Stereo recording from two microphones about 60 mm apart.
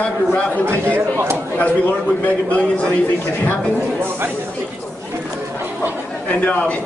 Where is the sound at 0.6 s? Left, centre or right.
Right.